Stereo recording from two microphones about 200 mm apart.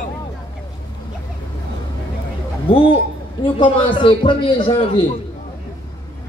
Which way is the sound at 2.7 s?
25° left (ahead or behind).